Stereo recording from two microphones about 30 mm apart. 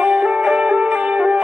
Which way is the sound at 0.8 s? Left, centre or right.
Right.